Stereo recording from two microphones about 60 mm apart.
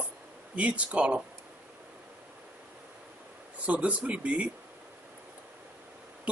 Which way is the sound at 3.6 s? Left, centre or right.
Right.